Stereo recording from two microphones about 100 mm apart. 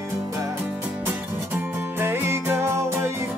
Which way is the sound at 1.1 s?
20° right (ahead or behind).